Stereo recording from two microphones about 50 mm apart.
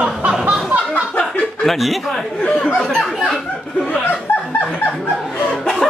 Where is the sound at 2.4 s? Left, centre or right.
Left.